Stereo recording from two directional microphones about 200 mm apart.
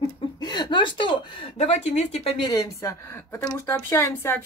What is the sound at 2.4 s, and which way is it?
A woman's voice, 20° left (ahead or behind).